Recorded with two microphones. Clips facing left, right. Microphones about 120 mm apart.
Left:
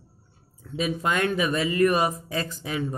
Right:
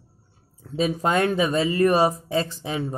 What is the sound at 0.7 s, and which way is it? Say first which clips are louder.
Speech: right 3 dB; 35° right (ahead or behind).